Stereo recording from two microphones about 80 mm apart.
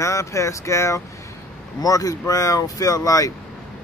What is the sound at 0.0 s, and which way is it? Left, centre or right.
Speech, left.